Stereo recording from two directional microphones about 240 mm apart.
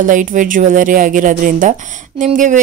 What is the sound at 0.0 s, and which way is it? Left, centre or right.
Speech, right.